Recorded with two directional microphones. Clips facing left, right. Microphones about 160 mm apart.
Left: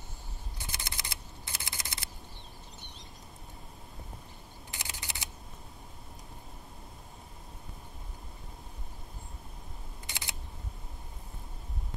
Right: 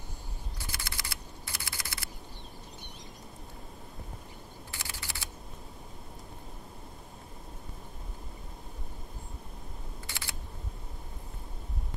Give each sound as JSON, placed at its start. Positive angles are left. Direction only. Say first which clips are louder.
{"t": 0.6, "sound": "a sound", "louder": "even", "side_deg": 20}
{"t": 4.6, "sound": "mechanisms", "louder": "left 1 dB", "side_deg": 20}
{"t": 10.0, "sound": "camera", "louder": "left 1 dB", "side_deg": 20}